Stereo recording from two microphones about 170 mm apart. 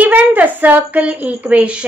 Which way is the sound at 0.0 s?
10° right (ahead or behind).